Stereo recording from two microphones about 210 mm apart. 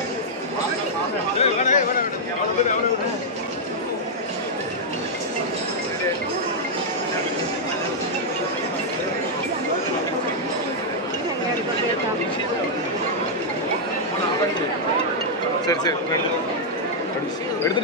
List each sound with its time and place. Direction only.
1.4 s speech: 35° left (ahead or behind)
15.6 s speech: 15° left (ahead or behind)